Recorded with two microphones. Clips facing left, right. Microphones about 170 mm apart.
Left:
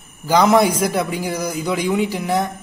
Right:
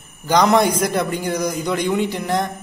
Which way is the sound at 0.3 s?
5° left (ahead or behind).